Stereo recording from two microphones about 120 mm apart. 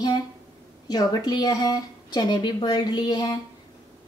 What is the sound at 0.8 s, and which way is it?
A woman's voice, 35° left (ahead or behind).